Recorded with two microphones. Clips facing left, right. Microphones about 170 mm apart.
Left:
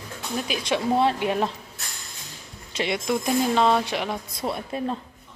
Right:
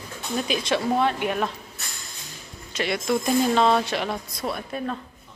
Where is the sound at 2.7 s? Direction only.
25° left (ahead or behind).